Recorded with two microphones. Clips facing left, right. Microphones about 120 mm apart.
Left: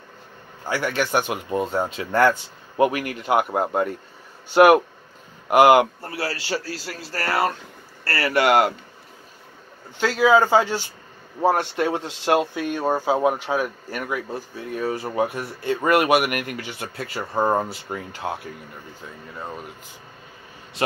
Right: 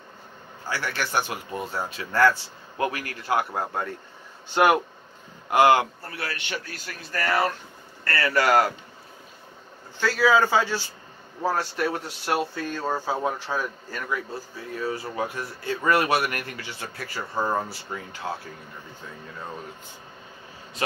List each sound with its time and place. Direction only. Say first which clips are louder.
0.7 s speech: left 6 dB; 15° left (ahead or behind)
5.9 s a man's voice: left 5 dB; 30° left (ahead or behind)
9.9 s speech: left 3 dB; 15° left (ahead or behind)